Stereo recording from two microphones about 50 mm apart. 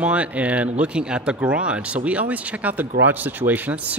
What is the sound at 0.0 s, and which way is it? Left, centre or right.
Speech, right.